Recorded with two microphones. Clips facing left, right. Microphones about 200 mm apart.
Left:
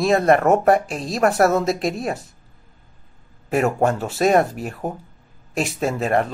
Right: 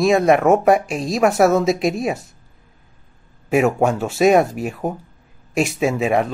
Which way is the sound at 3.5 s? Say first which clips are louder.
Right 3 dB; 5° right (ahead or behind).